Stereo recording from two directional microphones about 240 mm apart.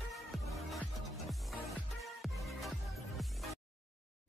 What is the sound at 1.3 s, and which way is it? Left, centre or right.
Music, centre.